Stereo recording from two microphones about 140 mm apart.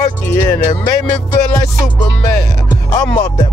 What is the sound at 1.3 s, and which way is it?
Music, 30° left (ahead or behind).